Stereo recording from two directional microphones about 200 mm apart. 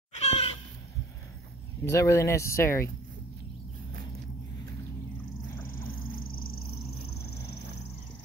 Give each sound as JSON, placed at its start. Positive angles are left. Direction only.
{"t": 0.2, "sound": "cat", "side_deg": 30}
{"t": 1.9, "sound": "speech", "side_deg": 15}